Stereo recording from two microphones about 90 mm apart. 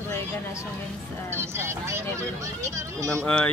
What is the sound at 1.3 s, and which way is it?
Speech, 30° right (ahead or behind).